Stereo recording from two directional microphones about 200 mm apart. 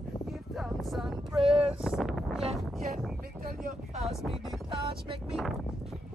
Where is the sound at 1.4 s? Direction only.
25° right (ahead or behind).